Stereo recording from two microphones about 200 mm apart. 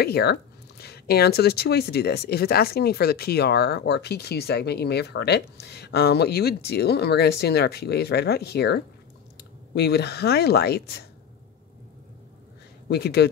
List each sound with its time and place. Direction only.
0.0 s speech: 55° left (ahead or behind)
12.8 s speech: 55° left (ahead or behind)